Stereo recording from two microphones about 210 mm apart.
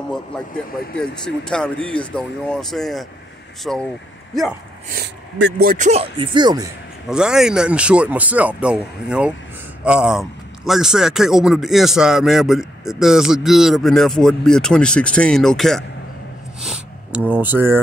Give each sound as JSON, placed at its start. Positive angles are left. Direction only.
{"t": 0.9, "sound": "speech", "side_deg": 5}
{"t": 4.8, "sound": "speech", "side_deg": -50}
{"t": 7.1, "sound": "speech", "side_deg": -5}
{"t": 17.3, "sound": "speech", "side_deg": -10}